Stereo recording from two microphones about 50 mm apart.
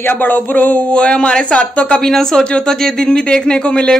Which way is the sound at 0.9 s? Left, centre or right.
Left.